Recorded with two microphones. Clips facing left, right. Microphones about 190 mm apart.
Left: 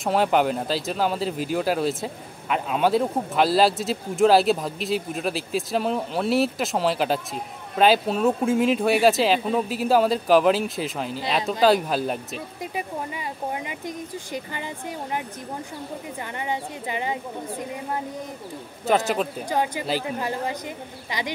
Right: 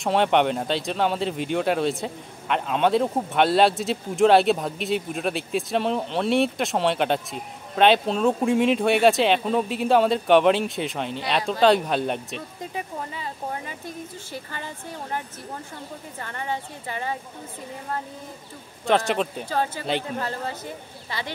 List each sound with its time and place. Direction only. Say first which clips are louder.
0.0 s speech: even; centre (ahead or behind)
12.7 s speech: left 2 dB; 15° left (ahead or behind)
16.3 s speech: even; 15° left (ahead or behind)
18.9 s speech: even; centre (ahead or behind)
19.5 s speech: left 1 dB; 15° left (ahead or behind)